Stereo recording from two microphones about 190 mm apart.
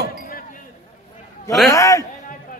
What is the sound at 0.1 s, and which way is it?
Chink, 50° left (ahead or behind).